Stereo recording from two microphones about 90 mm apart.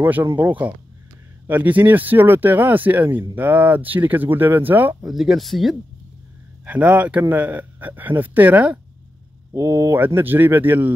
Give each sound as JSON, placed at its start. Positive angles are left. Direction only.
{"t": 0.0, "sound": "speech", "side_deg": -25}
{"t": 5.0, "sound": "speech", "side_deg": 0}
{"t": 6.6, "sound": "speech", "side_deg": -15}
{"t": 9.5, "sound": "speech", "side_deg": -30}